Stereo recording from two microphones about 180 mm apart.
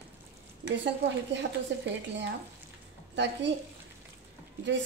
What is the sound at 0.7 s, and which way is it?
Speech, 75° right (ahead or behind).